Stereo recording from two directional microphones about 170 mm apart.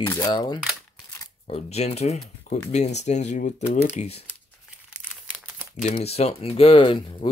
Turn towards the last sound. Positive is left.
turn(degrees=30)  # may be behind; listen again after turning